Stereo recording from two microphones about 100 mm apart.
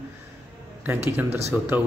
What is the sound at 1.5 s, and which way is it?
Speech, 20° right (ahead or behind).